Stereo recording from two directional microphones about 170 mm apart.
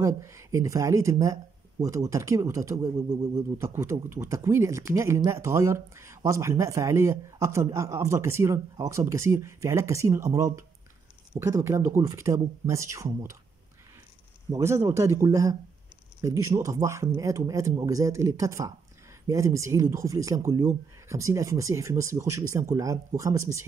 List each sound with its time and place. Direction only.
0.0 s speech: 15° right (ahead or behind)
14.5 s speech: 15° right (ahead or behind)